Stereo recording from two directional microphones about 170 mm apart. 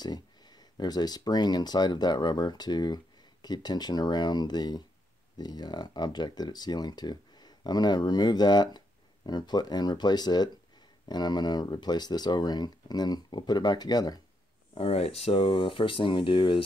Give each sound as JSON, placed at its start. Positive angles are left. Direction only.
{"t": 0.0, "sound": "speech", "side_deg": 25}
{"t": 14.7, "sound": "speech", "side_deg": 35}